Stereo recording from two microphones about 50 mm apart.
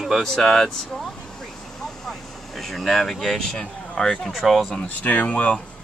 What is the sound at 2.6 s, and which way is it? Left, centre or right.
Speech, centre.